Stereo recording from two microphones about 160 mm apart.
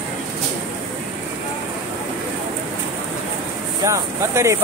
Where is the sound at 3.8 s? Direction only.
20° right (ahead or behind).